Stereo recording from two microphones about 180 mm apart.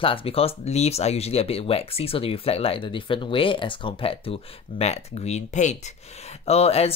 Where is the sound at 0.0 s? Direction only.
30° left (ahead or behind).